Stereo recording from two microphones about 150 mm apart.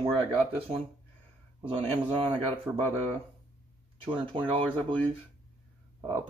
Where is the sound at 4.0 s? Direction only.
35° right (ahead or behind).